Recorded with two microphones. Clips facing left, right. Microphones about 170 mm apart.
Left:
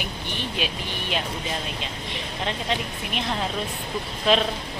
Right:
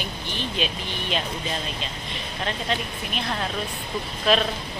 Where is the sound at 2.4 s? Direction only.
20° left (ahead or behind).